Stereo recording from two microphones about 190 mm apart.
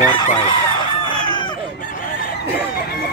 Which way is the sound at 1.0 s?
25° left (ahead or behind).